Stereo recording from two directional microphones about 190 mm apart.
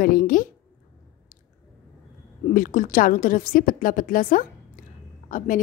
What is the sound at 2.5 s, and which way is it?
A woman's voice, 45° left (ahead or behind).